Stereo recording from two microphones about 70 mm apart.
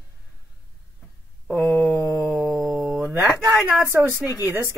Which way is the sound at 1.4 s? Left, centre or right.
Centre.